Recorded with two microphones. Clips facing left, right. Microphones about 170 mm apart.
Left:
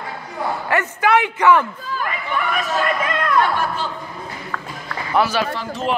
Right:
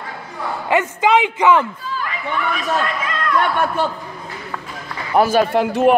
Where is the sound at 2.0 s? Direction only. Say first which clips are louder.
Even; 50° left (ahead or behind).